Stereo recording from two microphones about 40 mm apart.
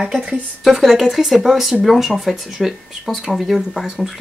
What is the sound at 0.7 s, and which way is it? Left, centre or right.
Speech, centre.